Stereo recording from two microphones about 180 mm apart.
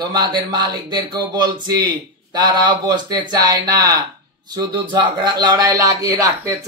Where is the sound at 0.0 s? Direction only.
25° right (ahead or behind).